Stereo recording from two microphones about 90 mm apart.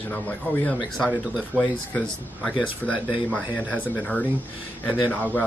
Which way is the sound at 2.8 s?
15° left (ahead or behind).